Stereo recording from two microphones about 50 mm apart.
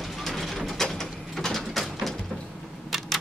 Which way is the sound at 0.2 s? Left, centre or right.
Centre.